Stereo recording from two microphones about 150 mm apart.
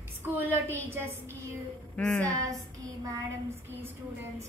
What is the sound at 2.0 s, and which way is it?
Speech, 10° left (ahead or behind).